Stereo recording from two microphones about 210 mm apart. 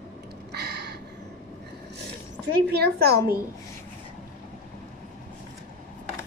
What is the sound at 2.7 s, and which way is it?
Speech, 50° right (ahead or behind).